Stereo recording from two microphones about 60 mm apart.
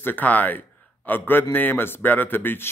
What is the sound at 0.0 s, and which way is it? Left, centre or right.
A man's voice, left.